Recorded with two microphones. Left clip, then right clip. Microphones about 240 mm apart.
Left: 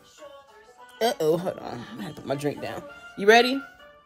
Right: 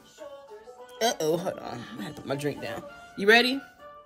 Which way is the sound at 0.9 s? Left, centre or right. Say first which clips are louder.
Left 3 dB; centre.